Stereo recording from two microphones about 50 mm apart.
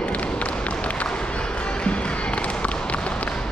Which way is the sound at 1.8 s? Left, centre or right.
Left.